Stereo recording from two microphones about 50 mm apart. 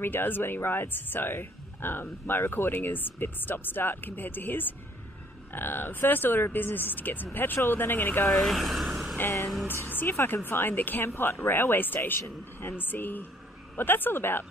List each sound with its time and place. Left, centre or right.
0.0 s speech: left
8.5 s speech: centre
9.8 s speech: left